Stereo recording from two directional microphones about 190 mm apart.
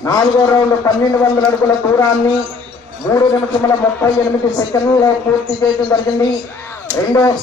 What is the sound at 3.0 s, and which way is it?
Speech, 20° left (ahead or behind).